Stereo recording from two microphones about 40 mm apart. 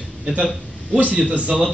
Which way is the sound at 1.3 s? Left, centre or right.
Right.